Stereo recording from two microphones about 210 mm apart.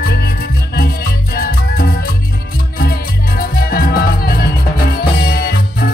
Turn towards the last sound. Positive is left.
turn(degrees=45)  # may be behind; listen again after turning